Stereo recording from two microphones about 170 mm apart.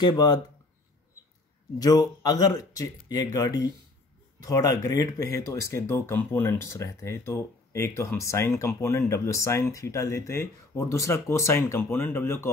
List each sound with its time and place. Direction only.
0.0 s speech: 25° left (ahead or behind)
1.8 s speech: 20° left (ahead or behind)